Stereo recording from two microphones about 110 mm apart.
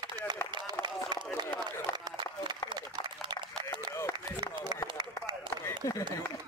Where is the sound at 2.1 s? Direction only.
45° right (ahead or behind).